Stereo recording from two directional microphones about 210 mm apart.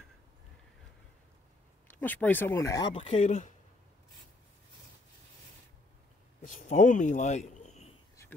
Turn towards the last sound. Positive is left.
turn(degrees=35)  # may be behind; listen again after turning